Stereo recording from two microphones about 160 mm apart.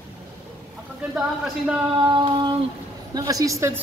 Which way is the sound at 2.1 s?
30° right (ahead or behind).